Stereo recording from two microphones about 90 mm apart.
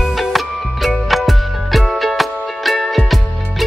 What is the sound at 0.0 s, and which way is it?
Music, centre (ahead or behind).